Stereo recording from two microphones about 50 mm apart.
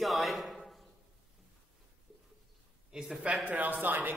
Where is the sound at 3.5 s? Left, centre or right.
Right.